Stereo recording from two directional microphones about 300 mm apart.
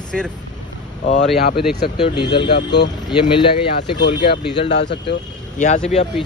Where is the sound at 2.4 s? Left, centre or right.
Left.